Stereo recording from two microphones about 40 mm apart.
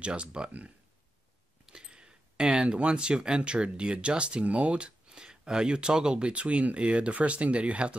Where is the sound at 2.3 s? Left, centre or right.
Right.